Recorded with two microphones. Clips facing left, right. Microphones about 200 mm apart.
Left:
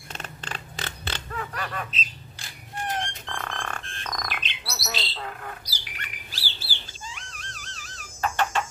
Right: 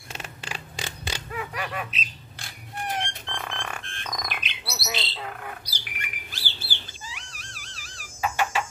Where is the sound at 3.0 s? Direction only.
15° right (ahead or behind).